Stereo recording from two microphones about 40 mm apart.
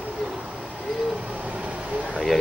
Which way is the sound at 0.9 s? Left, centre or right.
Centre.